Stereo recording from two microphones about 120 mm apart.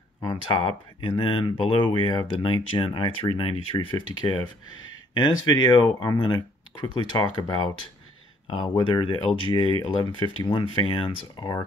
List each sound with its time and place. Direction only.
0.2 s speech: 35° left (ahead or behind)
5.5 s speech: 35° left (ahead or behind)